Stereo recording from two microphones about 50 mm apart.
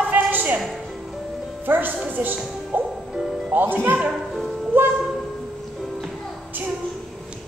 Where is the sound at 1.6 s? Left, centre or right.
Right.